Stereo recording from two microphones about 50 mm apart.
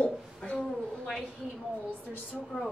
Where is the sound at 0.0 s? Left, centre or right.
Left.